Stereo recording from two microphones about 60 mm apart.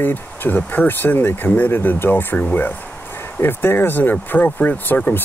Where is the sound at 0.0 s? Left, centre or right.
Left.